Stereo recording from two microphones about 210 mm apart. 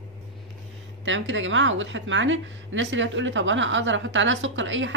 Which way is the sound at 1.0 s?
65° right (ahead or behind).